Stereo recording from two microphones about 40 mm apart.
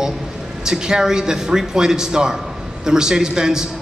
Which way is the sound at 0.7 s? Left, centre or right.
Centre.